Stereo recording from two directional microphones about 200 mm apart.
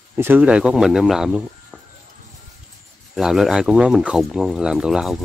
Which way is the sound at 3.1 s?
Centre (ahead or behind).